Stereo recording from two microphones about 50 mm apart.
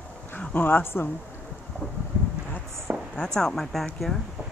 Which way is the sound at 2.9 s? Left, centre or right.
Right.